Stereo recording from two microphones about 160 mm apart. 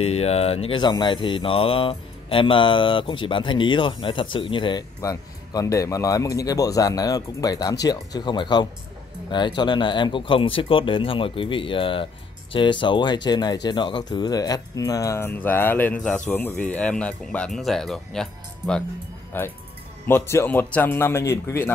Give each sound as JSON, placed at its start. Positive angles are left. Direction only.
{"t": 0.0, "sound": "mantra", "side_deg": 40}
{"t": 7.8, "sound": "speech", "side_deg": 25}
{"t": 9.3, "sound": "mantra", "side_deg": 30}
{"t": 12.5, "sound": "a man's voice", "side_deg": 30}